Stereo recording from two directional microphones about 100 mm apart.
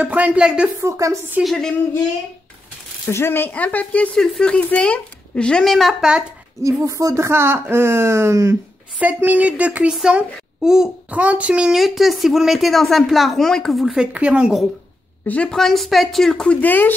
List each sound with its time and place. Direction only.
0.0 s speech: 15° right (ahead or behind)
0.7 s a woman's voice: 30° right (ahead or behind)
1.4 s a child's voice: centre (ahead or behind)
3.1 s speech: 25° left (ahead or behind); by 6.2 s 5° right (ahead or behind)
6.6 s speech: 35° right (ahead or behind)
9.0 s a child's voice: 15° right (ahead or behind)
15.2 s a child's voice: 15° left (ahead or behind)
16.6 s speech: 15° left (ahead or behind)